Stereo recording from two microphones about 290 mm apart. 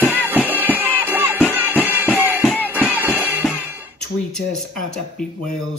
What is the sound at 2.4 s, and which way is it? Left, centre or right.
Music, centre.